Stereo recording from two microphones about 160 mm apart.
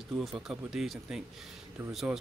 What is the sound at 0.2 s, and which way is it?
Speech, centre (ahead or behind).